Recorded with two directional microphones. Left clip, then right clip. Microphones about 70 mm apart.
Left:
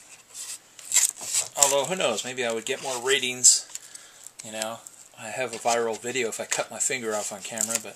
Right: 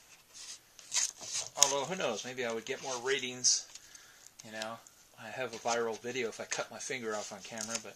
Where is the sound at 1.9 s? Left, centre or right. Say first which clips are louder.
Left 9 dB; left.